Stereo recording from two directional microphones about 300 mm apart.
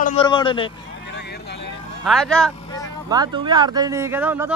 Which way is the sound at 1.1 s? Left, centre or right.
Left.